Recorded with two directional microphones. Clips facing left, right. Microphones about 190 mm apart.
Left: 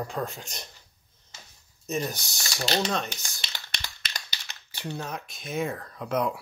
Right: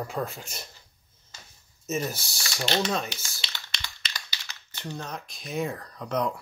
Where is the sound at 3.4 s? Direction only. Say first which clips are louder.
Left 1 dB; 50° left (ahead or behind).